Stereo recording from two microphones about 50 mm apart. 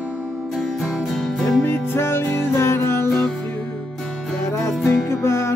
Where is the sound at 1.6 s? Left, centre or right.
Left.